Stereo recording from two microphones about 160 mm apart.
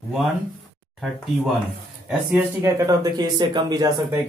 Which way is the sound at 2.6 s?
20° right (ahead or behind).